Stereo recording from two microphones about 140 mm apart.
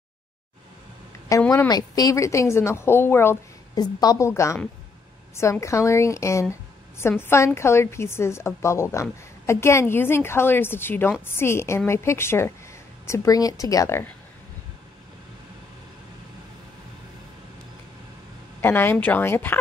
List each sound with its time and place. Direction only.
1.5 s a woman's voice: 25° left (ahead or behind)
18.6 s speech: 15° left (ahead or behind)